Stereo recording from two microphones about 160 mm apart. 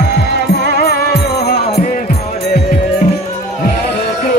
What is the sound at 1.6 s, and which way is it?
Music, 45° left (ahead or behind).